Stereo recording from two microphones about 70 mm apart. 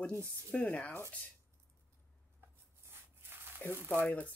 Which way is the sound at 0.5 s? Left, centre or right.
Left.